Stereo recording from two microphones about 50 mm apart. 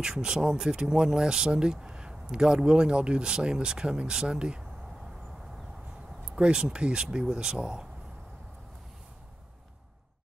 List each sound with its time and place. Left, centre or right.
0.0 s speech: centre
6.3 s speech: centre